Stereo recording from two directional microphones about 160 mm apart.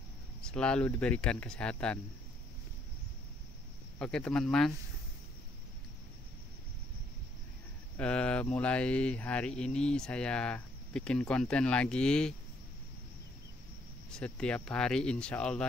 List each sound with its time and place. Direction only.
0.4 s mantra: 5° left (ahead or behind)
4.0 s speech: 5° left (ahead or behind)
8.0 s mantra: 5° left (ahead or behind)
14.1 s speech: 5° left (ahead or behind)